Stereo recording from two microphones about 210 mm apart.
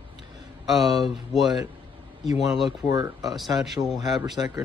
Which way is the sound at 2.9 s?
20° right (ahead or behind).